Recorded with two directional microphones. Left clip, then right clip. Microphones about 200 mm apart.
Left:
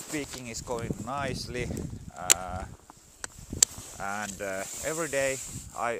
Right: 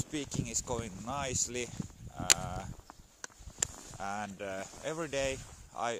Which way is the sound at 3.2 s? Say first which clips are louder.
Left 6 dB; 35° left (ahead or behind).